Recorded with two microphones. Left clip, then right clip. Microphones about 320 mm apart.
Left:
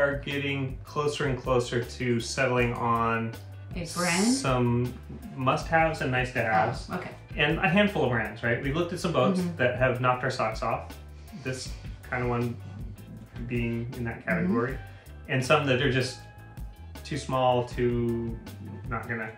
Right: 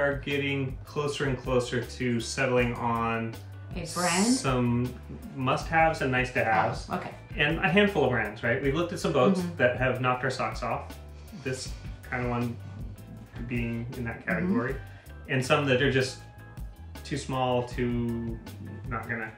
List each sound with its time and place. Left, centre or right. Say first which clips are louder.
0.2 s speech: right 1 dB; centre
12.1 s speech: left 2 dB; centre
13.6 s speech: left 2 dB; centre